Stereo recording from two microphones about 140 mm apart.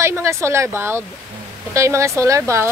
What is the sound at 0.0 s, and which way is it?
Speech, 20° right (ahead or behind).